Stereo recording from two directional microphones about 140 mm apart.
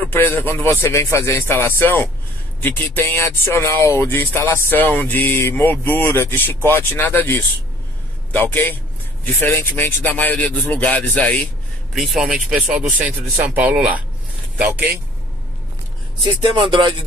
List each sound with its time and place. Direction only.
0.1 s speech: 15° left (ahead or behind)
11.9 s speech: centre (ahead or behind)
16.5 s music: 35° right (ahead or behind)